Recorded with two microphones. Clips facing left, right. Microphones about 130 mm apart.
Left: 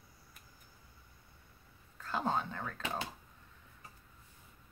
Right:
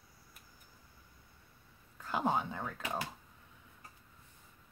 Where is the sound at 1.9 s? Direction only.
15° right (ahead or behind).